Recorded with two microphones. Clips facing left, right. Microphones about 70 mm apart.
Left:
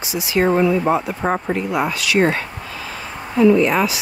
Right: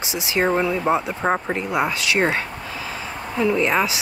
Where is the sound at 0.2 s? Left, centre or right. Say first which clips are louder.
Left 3 dB; right.